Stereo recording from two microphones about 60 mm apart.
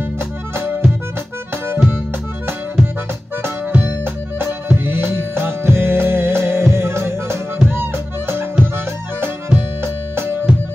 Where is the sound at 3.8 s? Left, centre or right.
Right.